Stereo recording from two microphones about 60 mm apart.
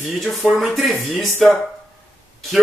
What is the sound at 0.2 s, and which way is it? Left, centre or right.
Speech, centre.